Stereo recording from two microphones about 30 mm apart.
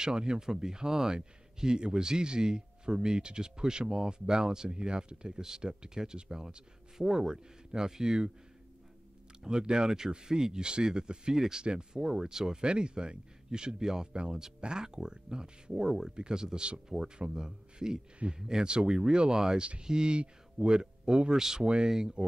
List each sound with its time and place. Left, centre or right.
0.0 s speech: right
9.4 s speech: right
12.6 s speech: right
19.3 s speech: centre
19.8 s speech: right